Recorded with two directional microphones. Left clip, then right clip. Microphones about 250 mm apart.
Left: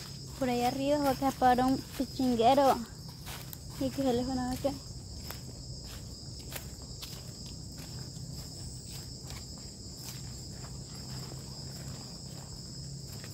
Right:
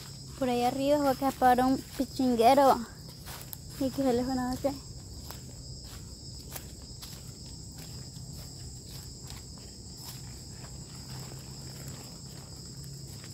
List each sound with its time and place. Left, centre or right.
0.4 s speech: centre